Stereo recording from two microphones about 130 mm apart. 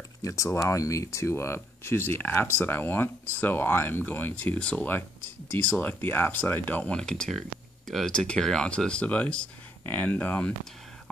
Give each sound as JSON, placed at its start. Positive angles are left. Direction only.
{"t": 0.2, "sound": "speech", "side_deg": 25}